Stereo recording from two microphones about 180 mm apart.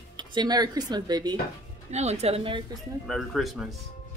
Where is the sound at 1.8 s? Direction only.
40° right (ahead or behind).